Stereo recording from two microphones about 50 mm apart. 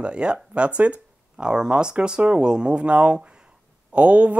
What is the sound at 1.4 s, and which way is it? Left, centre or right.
Speech, centre.